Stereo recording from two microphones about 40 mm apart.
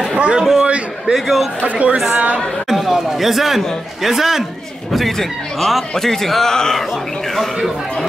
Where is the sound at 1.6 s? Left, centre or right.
Right.